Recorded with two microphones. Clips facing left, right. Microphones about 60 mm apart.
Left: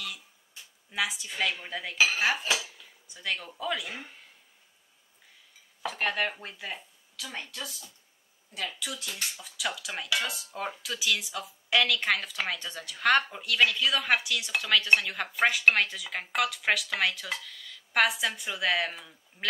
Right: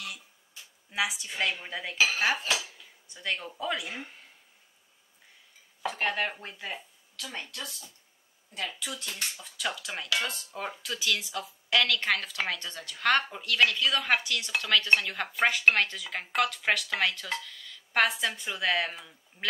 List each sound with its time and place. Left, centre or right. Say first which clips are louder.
0.9 s speech: even; centre
3.4 s speech: right 1 dB; centre
5.9 s speech: even; centre